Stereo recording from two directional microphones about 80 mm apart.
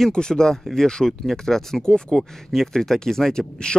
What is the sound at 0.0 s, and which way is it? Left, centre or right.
Speech, centre.